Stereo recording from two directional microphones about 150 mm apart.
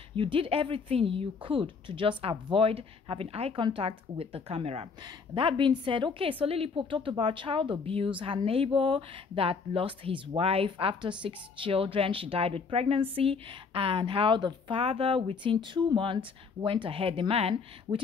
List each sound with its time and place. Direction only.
0.1 s a woman's voice: 35° right (ahead or behind)